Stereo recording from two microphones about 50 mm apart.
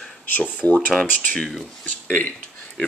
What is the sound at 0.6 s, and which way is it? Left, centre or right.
Speech, left.